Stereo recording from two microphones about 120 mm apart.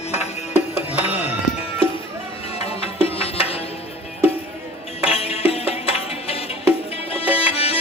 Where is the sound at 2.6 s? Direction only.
55° left (ahead or behind).